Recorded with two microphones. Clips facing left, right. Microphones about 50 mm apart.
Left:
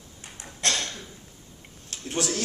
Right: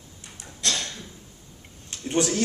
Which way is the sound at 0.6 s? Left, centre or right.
Left.